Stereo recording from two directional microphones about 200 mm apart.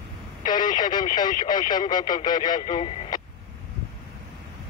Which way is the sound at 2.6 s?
30° left (ahead or behind).